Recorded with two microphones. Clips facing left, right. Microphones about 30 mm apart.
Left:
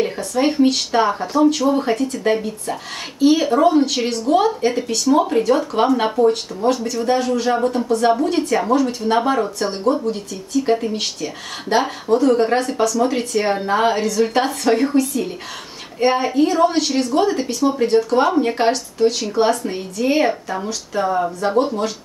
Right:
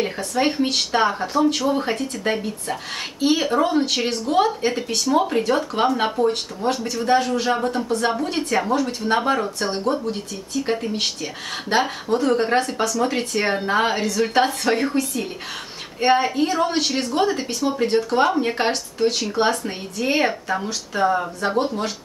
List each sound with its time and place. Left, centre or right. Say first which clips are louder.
0.0 s speech: left 3 dB; centre
18.7 s speech: left 4 dB; centre